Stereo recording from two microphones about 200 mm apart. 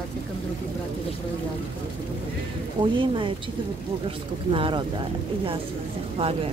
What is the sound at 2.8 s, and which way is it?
Speech, 25° right (ahead or behind).